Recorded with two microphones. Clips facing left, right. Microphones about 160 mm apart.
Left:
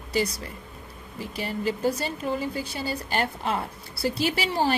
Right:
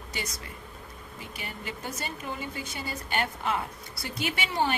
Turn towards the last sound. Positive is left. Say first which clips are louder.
# left 4 dB
turn(degrees=35)  # may be behind; listen again after turning